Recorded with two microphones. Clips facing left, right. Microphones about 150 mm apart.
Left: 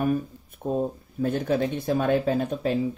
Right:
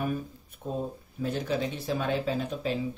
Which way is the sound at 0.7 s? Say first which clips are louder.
Left 6 dB; 50° left (ahead or behind).